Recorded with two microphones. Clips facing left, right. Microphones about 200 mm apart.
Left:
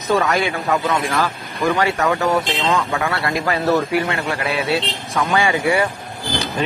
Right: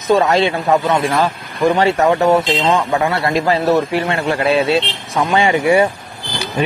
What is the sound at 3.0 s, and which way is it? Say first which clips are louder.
Speech: right 5 dB; 20° right (ahead or behind).